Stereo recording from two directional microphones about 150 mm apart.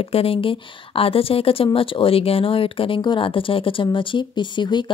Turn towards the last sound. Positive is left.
turn(degrees=30)  # may be behind; listen again after turning